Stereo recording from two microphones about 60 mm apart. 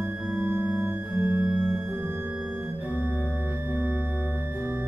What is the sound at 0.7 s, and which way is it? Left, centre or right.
Organ, right.